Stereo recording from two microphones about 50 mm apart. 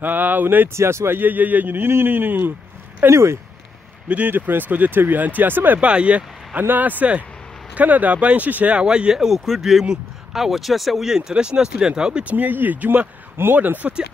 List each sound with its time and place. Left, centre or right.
0.0 s speech: right
0.7 s speech: right
1.2 s speech: right
3.1 s speech: right
4.3 s speech: right
5.8 s speech: right
6.7 s speech: right
8.7 s speech: centre
12.3 s speech: right
13.4 s speech: right
13.8 s speech: right